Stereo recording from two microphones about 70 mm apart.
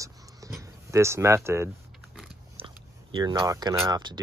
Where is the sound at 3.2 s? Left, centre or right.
Right.